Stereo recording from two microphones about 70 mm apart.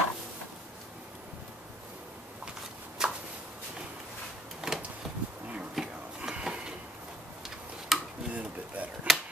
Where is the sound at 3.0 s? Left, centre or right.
Centre.